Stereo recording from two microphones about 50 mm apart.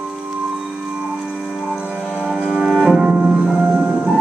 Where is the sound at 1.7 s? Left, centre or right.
Right.